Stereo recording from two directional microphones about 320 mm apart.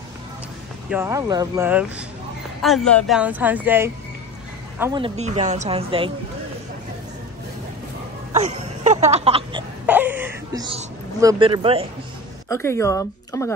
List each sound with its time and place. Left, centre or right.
0.8 s a woman's voice: centre
8.3 s music: right
9.8 s a sound: centre
12.4 s speech: centre